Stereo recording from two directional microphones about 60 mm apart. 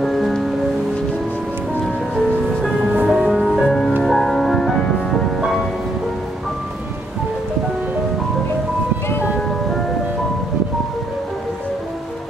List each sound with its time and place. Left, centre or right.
0.0 s music: centre
2.8 s music: right
3.1 s music: centre